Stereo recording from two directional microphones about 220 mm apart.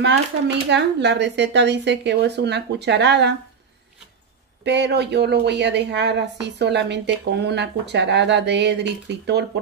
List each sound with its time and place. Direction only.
0.7 s a woman's voice: 50° right (ahead or behind)
4.6 s a woman's voice: 50° right (ahead or behind)